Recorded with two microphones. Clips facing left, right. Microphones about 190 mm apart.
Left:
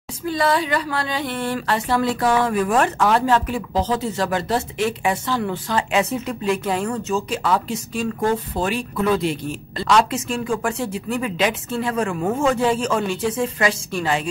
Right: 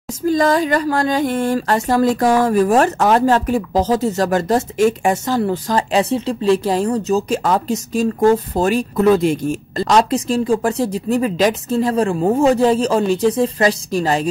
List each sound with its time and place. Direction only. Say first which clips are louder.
0.2 s speech: right 5 dB; 45° right (ahead or behind)